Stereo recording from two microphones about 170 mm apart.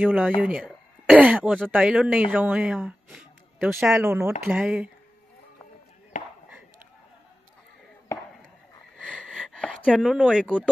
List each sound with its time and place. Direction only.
0.0 s speech: 10° right (ahead or behind)
3.9 s speech: 15° right (ahead or behind)
6.1 s chop: 50° left (ahead or behind)
8.9 s wheeze: centre (ahead or behind)
9.6 s speech: 5° left (ahead or behind)